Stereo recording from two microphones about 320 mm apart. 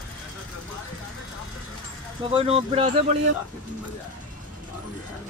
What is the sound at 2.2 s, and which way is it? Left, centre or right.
Speech, centre.